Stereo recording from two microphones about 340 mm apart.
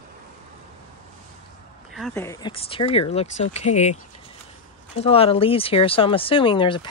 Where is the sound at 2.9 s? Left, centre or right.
Centre.